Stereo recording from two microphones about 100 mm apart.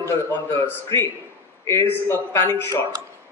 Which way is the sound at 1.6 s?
30° left (ahead or behind).